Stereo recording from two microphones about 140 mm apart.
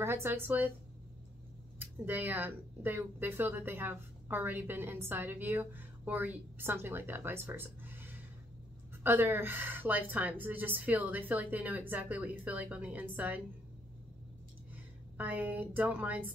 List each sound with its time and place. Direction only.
0.0 s a woman's voice: 15° right (ahead or behind)
1.8 s a woman's voice: 15° right (ahead or behind)
15.1 s a woman's voice: 10° right (ahead or behind)